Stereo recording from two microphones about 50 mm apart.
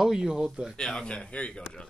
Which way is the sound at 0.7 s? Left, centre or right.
Centre.